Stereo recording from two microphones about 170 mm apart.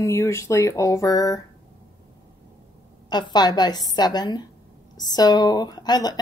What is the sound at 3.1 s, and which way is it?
Speech, 25° left (ahead or behind).